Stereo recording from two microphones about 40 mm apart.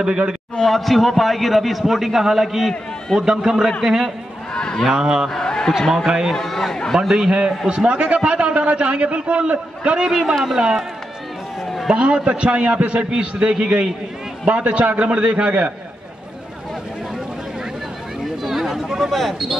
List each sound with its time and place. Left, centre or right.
0.7 s a man's voice: centre
4.6 s speech: left
4.8 s a man's voice: centre
5.3 s a man's voice: centre
5.8 s a man's voice: centre
6.0 s a man's voice: centre
6.3 s a man's voice: centre
7.0 s a man's voice: centre
11.6 s a sound: centre
11.9 s a man's voice: right
18.2 s a man's voice: centre